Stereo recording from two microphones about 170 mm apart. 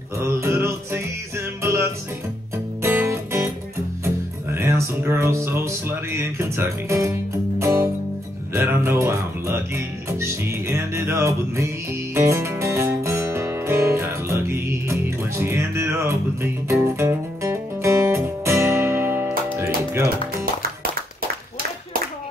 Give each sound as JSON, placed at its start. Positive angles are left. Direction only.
{"t": 0.2, "sound": "music", "side_deg": -15}